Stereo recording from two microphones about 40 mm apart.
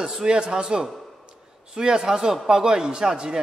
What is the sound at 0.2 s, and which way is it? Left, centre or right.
A man's voice, right.